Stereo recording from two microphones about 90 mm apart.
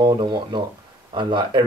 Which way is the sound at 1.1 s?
60° right (ahead or behind).